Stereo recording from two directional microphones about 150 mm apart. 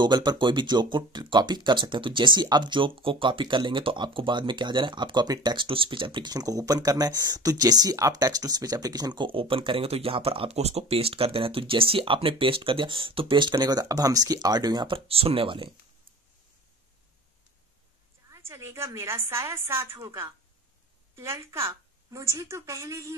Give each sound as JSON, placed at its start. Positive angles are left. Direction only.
{"t": 0.0, "sound": "speech", "side_deg": -30}
{"t": 18.3, "sound": "a woman's voice", "side_deg": -20}